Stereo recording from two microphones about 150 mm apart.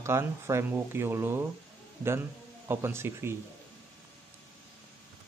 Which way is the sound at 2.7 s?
15° right (ahead or behind).